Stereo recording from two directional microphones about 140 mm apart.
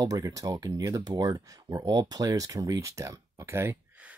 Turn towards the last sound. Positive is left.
turn(degrees=-20)  # may be behind; listen again after turning